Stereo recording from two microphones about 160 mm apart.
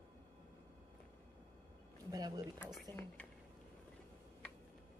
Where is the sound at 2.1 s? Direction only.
25° right (ahead or behind).